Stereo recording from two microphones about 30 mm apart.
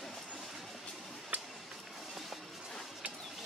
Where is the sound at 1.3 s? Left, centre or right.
Right.